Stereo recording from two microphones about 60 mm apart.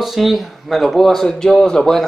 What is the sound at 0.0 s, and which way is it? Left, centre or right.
Speech, centre.